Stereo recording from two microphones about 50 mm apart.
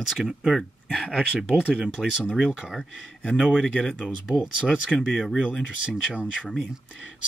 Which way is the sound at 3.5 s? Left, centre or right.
Centre.